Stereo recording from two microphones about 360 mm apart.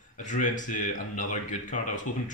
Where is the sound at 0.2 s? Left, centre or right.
Left.